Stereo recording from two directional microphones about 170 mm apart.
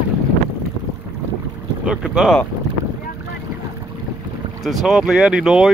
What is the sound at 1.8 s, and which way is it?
Speech, 5° right (ahead or behind).